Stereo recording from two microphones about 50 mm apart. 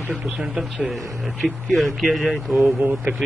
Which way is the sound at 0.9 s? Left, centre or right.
Centre.